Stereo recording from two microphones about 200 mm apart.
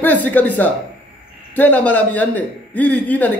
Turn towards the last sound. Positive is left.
turn(degrees=10)  # may be behind; listen again after turning